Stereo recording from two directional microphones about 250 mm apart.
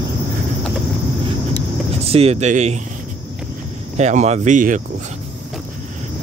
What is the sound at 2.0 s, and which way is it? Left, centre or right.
Speech, right.